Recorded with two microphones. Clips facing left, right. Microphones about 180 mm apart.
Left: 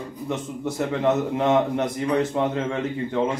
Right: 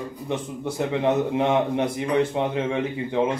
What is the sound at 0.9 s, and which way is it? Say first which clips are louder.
A man's voice: right 1 dB; 15° right (ahead or behind).